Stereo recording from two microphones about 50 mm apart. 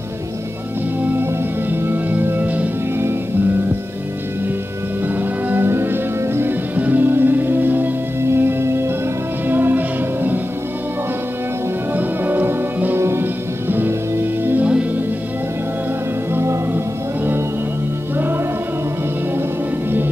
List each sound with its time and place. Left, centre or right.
1.7 s music: right
5.0 s music: right
5.7 s music: right
6.8 s music: right
9.5 s music: right
11.9 s music: right
14.6 s music: right
16.3 s music: right